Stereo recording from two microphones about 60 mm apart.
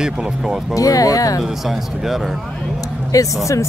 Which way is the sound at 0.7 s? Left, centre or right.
Left.